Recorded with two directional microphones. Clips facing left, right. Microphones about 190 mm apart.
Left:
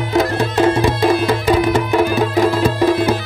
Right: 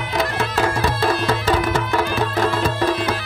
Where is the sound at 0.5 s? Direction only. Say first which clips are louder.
Left 9 dB; 20° left (ahead or behind).